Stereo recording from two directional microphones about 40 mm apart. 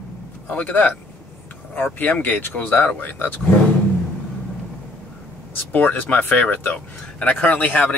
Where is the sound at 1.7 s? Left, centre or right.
Left.